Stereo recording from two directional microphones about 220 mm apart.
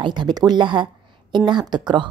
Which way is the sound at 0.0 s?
20° right (ahead or behind).